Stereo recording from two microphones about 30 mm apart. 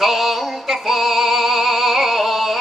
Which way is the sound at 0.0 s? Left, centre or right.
Centre.